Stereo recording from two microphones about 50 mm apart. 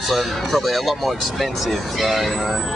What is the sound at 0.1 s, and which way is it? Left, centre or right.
Speech, centre.